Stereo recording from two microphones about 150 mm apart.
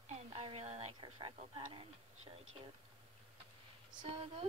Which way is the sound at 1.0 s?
35° right (ahead or behind).